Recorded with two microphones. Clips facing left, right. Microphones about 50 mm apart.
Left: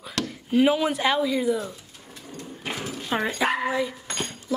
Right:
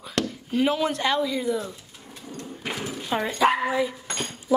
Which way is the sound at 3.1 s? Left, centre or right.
Centre.